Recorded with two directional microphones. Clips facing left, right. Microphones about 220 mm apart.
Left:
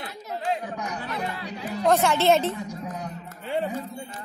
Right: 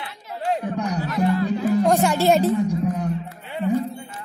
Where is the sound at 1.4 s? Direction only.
45° right (ahead or behind).